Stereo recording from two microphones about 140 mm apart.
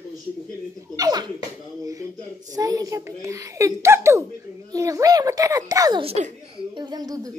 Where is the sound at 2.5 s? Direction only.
25° right (ahead or behind).